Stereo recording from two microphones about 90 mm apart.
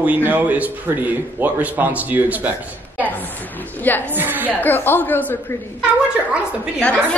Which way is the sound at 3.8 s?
20° left (ahead or behind).